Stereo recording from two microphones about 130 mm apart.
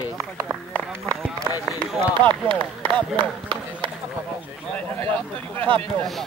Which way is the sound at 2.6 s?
10° left (ahead or behind).